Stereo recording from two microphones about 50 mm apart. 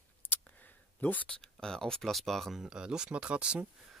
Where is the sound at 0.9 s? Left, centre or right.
Left.